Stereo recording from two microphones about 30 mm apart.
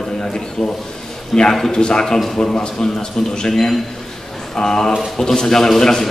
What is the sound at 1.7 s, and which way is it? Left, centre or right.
A man's voice, left.